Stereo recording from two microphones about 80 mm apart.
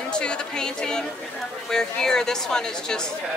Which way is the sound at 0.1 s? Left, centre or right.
Centre.